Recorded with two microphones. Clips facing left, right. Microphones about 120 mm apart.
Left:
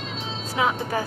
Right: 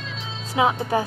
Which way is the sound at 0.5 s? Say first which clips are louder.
Right 4 dB; 25° right (ahead or behind).